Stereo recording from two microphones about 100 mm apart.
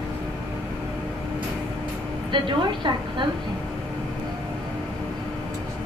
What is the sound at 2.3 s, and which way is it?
Speech, 55° right (ahead or behind).